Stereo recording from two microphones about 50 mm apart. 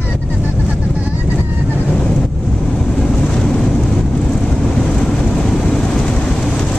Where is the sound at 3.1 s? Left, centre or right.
Centre.